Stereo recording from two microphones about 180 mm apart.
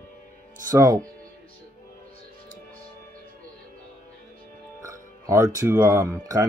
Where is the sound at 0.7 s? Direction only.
20° right (ahead or behind).